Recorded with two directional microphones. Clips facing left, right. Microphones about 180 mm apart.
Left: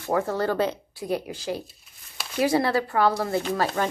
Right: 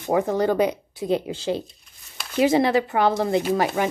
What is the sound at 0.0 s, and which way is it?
Speech, 20° right (ahead or behind).